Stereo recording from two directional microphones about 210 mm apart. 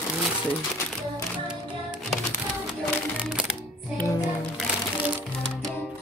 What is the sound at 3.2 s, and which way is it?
Music, 5° right (ahead or behind).